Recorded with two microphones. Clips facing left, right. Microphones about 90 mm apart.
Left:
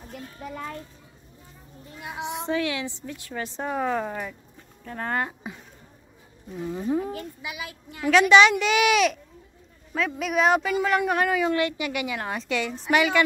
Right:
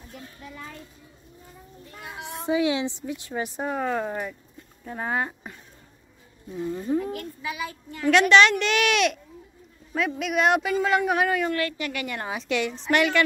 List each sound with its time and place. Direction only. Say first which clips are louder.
0.4 s a child's voice: left 8 dB; 65° left (ahead or behind)
2.0 s speech: left 5 dB; 20° left (ahead or behind)
2.4 s a woman's voice: right 5 dB; 15° right (ahead or behind)
3.6 s speech: left 1 dB; centre (ahead or behind)
6.5 s speech: even; 10° left (ahead or behind)
11.5 s speech: left 3 dB; 15° left (ahead or behind)
12.1 s speech: even; centre (ahead or behind)